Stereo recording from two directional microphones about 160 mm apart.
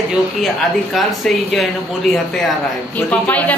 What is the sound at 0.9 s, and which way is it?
A woman's voice, centre (ahead or behind).